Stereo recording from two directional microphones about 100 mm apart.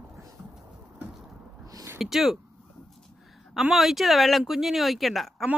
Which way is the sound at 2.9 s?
Centre (ahead or behind).